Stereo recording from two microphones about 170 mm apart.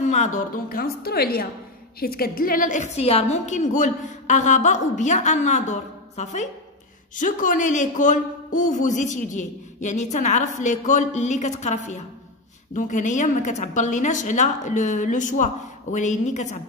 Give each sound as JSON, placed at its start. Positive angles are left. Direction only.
{"t": 0.0, "sound": "a woman's voice", "side_deg": 45}